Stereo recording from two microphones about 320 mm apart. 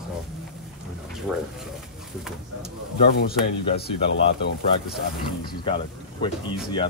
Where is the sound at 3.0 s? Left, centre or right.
Left.